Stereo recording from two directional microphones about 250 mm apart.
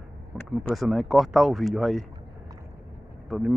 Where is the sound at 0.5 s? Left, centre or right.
Centre.